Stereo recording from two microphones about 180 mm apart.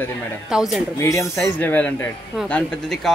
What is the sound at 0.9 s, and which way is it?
Speech, 15° left (ahead or behind).